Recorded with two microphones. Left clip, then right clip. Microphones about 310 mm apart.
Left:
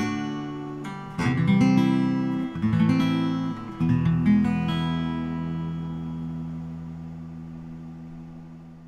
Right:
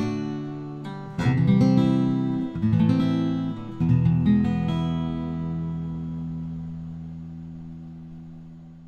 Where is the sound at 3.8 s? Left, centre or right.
Right.